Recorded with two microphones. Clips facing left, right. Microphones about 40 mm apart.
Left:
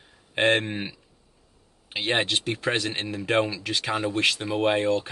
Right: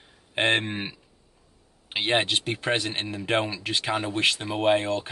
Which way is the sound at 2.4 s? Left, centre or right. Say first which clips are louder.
Even; centre.